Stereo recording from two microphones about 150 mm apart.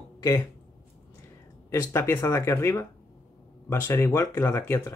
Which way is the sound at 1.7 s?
20° left (ahead or behind).